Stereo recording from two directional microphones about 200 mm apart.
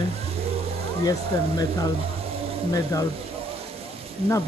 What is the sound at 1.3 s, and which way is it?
Speech, 15° left (ahead or behind).